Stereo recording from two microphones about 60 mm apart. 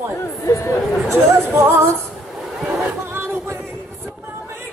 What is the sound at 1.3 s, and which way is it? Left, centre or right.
Music, right.